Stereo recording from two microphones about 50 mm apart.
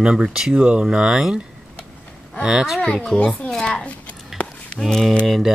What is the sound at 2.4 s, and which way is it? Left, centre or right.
Speech, centre.